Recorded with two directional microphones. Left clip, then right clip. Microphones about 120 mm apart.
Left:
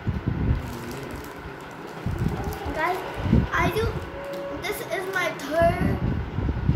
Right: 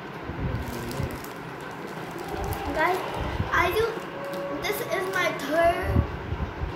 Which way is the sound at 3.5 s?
15° left (ahead or behind).